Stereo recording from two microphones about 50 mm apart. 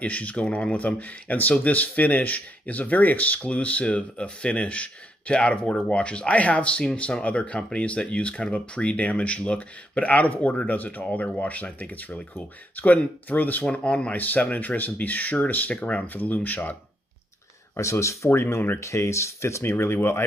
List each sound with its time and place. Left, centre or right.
0.0 s speech: left
14.1 s speech: left
17.7 s speech: left